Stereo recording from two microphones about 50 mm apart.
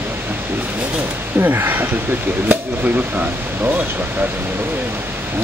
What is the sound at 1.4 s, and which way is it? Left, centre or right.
Speech, right.